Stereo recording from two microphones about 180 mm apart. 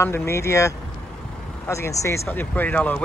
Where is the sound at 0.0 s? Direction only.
15° left (ahead or behind).